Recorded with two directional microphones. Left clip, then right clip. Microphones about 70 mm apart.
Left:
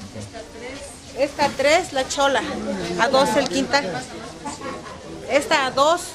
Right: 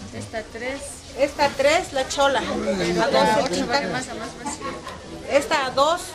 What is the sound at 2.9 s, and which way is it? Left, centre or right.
Speech, left.